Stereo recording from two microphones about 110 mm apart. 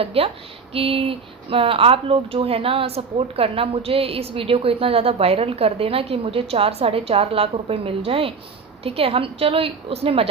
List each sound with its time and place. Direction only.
0.0 s speech: 60° right (ahead or behind)